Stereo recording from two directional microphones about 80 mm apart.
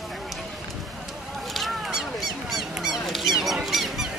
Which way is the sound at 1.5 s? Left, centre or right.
Centre.